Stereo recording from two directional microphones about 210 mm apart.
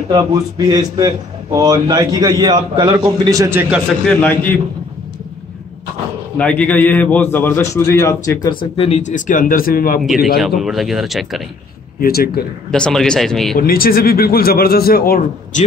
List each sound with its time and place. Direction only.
0.1 s a man's voice: 20° right (ahead or behind)
4.1 s a man's voice: 5° left (ahead or behind)
6.3 s a man's voice: 5° left (ahead or behind); by 10.0 s 45° left (ahead or behind)
10.0 s speech: centre (ahead or behind)
12.0 s a man's voice: 45° left (ahead or behind)
12.7 s speech: 5° left (ahead or behind)
13.6 s a man's voice: 45° left (ahead or behind)